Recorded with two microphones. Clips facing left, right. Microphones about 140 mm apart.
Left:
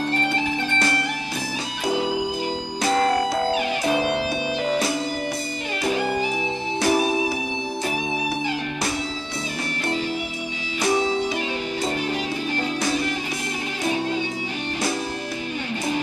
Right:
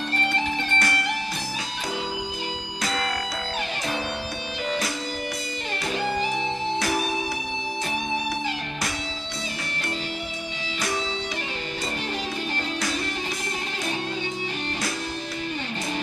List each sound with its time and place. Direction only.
2.8 s music: 25° left (ahead or behind)
3.2 s music: 45° left (ahead or behind)
6.8 s music: 25° left (ahead or behind)